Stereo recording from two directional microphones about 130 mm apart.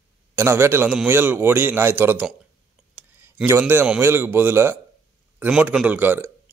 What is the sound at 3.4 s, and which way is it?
A man's voice, 15° right (ahead or behind).